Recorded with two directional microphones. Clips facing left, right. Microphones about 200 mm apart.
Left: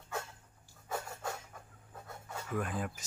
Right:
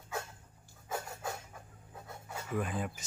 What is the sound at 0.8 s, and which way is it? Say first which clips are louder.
Pant: even; 5° right (ahead or behind).